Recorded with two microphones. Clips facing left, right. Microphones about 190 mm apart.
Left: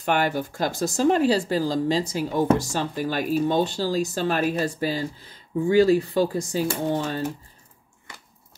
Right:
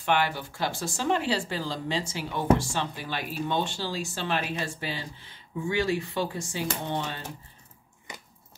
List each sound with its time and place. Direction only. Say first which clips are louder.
0.0 s speech: left 3 dB; 45° left (ahead or behind)